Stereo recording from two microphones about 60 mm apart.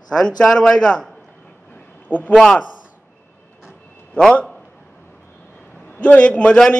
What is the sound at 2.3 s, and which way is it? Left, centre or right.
Speech, centre.